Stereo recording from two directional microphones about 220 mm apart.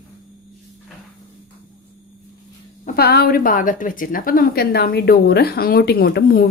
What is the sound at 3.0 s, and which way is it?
A woman's voice, 45° left (ahead or behind).